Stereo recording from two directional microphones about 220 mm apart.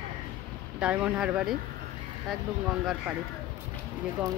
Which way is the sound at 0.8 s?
5° right (ahead or behind).